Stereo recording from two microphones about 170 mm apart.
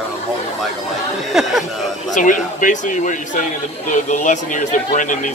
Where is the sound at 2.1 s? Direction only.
50° left (ahead or behind).